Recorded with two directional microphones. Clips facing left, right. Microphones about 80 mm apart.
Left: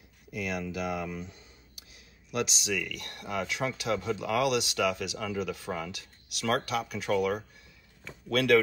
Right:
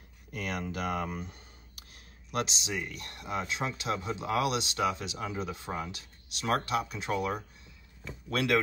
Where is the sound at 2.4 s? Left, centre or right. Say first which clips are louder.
Left 3 dB; right.